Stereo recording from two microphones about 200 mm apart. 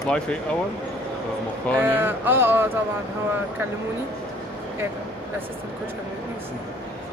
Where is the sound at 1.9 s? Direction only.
10° right (ahead or behind).